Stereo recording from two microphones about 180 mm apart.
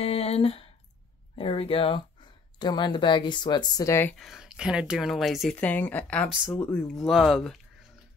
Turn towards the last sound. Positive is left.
turn(degrees=0)  # may be behind; listen again after turning